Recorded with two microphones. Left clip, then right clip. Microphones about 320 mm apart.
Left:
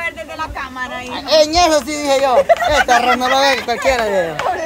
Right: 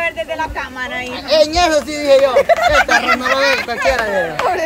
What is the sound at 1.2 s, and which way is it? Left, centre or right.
Speech, left.